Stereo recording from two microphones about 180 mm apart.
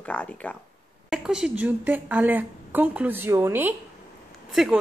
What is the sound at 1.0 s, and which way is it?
A woman's voice, 5° right (ahead or behind).